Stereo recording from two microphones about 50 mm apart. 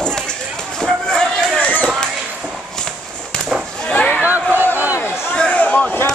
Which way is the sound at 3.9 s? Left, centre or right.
Left.